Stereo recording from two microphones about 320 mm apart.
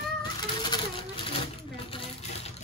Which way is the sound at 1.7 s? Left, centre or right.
Centre.